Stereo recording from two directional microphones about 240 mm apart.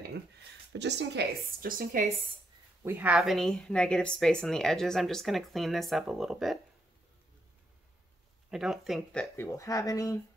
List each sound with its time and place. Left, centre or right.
0.7 s speech: right
2.8 s a woman's voice: centre
8.5 s speech: centre